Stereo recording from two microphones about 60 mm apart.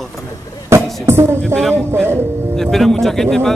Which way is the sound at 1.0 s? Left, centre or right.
Right.